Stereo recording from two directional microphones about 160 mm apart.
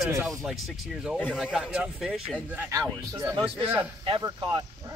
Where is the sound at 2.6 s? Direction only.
15° right (ahead or behind).